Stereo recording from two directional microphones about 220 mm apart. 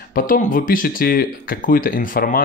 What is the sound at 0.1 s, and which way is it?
Speech, 40° left (ahead or behind).